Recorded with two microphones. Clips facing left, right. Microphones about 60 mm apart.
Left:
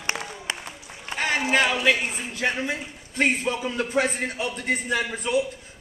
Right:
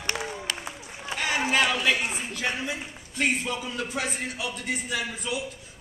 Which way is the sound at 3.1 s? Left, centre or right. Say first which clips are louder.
Left 3 dB; left.